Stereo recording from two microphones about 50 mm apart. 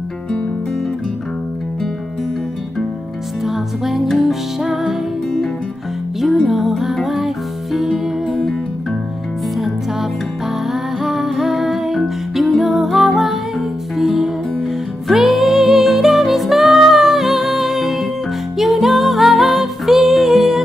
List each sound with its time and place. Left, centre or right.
3.4 s music: centre
6.2 s music: centre
10.7 s music: centre